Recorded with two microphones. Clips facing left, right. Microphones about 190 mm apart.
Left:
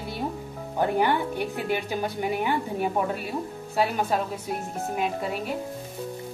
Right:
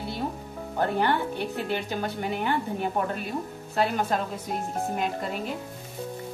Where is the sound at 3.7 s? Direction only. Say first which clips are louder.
Left 1 dB; 10° left (ahead or behind).